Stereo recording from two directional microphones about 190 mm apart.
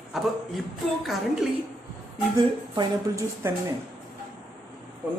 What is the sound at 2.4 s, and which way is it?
A woman's voice, 20° right (ahead or behind).